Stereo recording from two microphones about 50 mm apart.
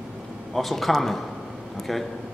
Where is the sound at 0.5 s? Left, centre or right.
Centre.